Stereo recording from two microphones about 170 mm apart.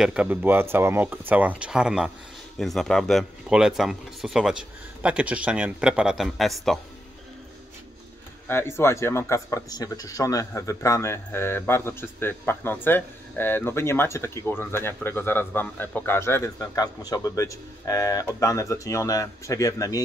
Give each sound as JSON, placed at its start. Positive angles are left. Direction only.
{"t": 0.0, "sound": "speech", "side_deg": -5}
{"t": 8.5, "sound": "speech", "side_deg": 15}